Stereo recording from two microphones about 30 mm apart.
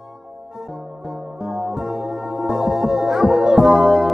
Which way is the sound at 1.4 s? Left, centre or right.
Centre.